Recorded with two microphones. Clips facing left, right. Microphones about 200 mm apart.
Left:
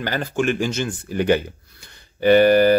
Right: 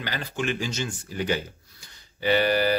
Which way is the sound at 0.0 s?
50° left (ahead or behind).